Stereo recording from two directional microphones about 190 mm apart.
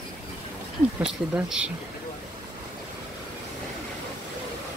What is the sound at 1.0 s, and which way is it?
Speech, 5° right (ahead or behind).